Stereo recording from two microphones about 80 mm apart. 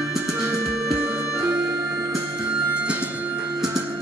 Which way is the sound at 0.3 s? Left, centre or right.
Right.